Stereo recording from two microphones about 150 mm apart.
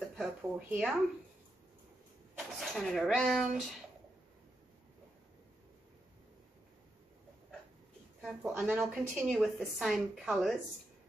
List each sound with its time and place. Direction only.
0.2 s speech: 10° right (ahead or behind)
2.3 s speech: centre (ahead or behind)
8.2 s a woman's voice: 5° right (ahead or behind)